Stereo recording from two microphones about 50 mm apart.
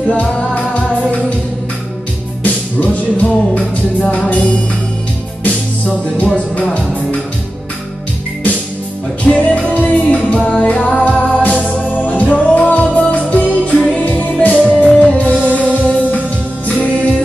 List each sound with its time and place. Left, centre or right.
0.1 s music: left
2.4 s music: left
5.4 s music: left
9.2 s music: left
10.2 s music: centre
15.7 s music: right
16.6 s music: left